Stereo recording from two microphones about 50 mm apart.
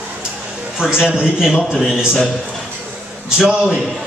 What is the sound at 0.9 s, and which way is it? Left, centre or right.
Speech, centre.